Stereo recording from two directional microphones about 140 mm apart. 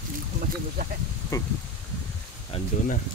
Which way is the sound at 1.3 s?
25° left (ahead or behind).